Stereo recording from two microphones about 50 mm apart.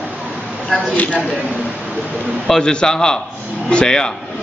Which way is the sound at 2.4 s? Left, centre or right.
Centre.